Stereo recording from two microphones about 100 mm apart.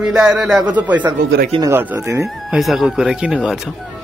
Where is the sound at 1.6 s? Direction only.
30° right (ahead or behind).